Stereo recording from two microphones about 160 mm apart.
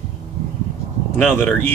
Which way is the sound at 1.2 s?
5° left (ahead or behind).